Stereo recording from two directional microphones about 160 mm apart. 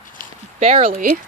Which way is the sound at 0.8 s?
60° right (ahead or behind).